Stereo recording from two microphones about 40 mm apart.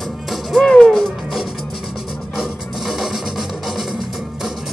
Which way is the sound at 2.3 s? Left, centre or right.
Centre.